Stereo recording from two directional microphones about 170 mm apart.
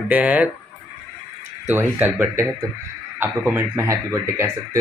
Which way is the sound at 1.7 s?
10° right (ahead or behind).